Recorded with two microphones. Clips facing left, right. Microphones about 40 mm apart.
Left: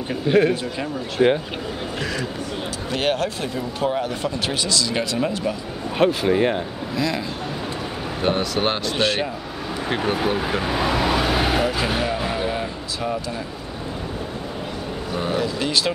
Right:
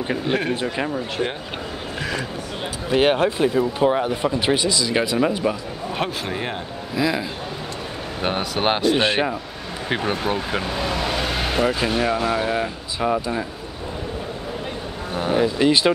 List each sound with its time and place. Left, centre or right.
0.3 s speech: centre
1.2 s speech: left
2.9 s speech: centre
5.9 s speech: centre
7.0 s speech: centre
9.8 s speech: centre
12.5 s speech: right
15.3 s speech: right